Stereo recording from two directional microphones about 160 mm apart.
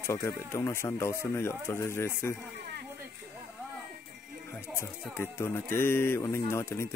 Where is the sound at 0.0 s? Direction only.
15° left (ahead or behind).